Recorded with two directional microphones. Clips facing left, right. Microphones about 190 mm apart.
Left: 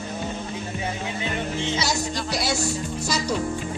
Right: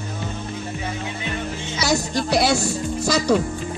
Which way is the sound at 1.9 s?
60° right (ahead or behind).